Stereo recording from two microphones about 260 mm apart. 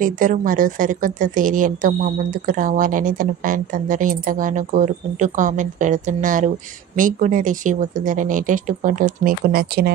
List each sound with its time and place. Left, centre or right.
0.0 s a woman's voice: right